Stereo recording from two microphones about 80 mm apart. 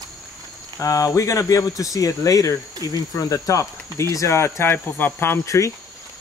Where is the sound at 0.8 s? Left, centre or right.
Left.